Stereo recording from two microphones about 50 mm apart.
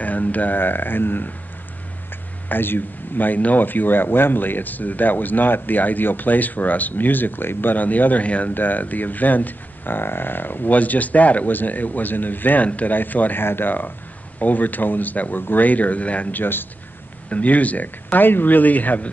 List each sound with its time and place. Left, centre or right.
0.0 s speech: left
2.5 s speech: left
17.3 s speech: left